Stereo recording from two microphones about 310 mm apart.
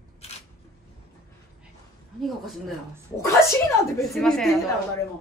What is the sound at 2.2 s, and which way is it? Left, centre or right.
A woman's voice, centre.